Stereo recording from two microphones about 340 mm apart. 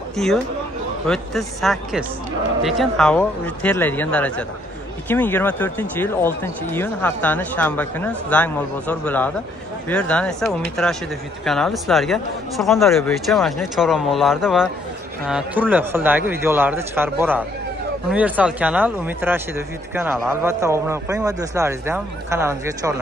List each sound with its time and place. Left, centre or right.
0.1 s speech: centre